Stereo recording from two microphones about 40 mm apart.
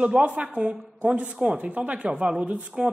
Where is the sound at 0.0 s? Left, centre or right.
Right.